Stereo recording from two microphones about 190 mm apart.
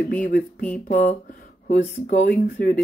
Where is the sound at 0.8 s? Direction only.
40° left (ahead or behind).